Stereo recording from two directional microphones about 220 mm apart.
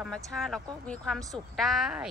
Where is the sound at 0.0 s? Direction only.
Centre (ahead or behind).